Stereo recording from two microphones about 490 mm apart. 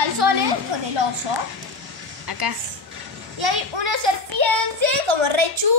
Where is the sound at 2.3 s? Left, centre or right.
Right.